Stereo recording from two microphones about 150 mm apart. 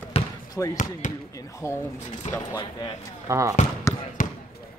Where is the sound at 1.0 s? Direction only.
55° left (ahead or behind).